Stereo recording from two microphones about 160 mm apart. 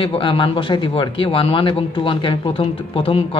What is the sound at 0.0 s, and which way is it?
Speech, 35° left (ahead or behind).